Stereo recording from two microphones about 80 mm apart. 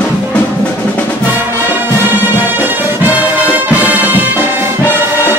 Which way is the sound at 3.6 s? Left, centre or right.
Right.